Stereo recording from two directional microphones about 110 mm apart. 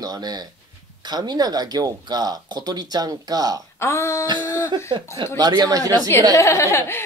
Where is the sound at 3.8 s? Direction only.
25° left (ahead or behind).